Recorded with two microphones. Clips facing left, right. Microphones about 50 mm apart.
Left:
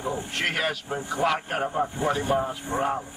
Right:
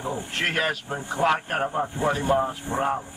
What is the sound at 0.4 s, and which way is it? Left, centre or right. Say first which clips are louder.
Speech: right 3 dB; right.